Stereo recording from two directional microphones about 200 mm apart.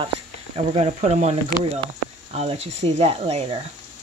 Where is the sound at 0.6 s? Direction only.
30° right (ahead or behind).